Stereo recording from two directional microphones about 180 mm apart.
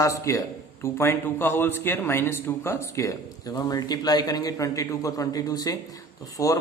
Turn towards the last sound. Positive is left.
turn(degrees=20)  # may be behind; listen again after turning